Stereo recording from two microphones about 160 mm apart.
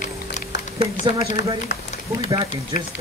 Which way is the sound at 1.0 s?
25° right (ahead or behind).